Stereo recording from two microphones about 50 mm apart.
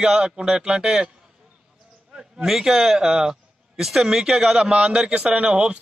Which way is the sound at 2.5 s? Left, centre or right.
Centre.